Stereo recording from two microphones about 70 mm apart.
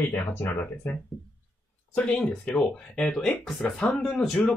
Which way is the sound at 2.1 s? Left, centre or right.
Centre.